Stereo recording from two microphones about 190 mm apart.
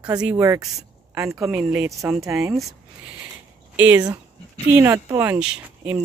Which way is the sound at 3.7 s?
10° right (ahead or behind).